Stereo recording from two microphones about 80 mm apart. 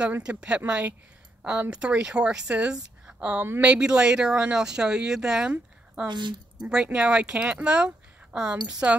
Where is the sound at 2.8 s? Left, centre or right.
Centre.